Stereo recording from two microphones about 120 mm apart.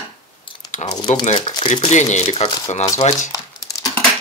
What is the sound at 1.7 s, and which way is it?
Speech, 70° left (ahead or behind).